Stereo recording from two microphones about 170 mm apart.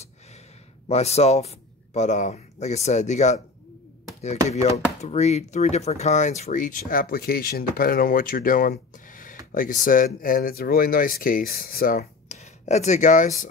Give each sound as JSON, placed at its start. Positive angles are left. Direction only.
{"t": 0.8, "sound": "a man's voice", "side_deg": 40}
{"t": 4.5, "sound": "speech", "side_deg": 40}
{"t": 12.3, "sound": "speech", "side_deg": 40}